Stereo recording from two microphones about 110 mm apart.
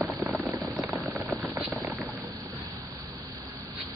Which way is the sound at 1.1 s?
Centre (ahead or behind).